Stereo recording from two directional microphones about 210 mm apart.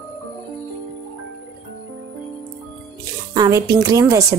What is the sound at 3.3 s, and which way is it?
Speech, 15° right (ahead or behind).